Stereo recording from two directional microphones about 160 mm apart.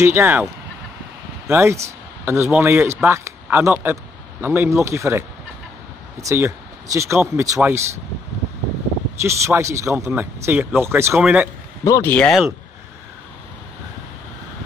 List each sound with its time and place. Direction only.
0.0 s speech: 15° right (ahead or behind)
1.5 s speech: 15° right (ahead or behind)
6.2 s speech: 20° right (ahead or behind)
9.2 s speech: 15° right (ahead or behind)
11.8 s speech: 15° left (ahead or behind); by 12.5 s centre (ahead or behind)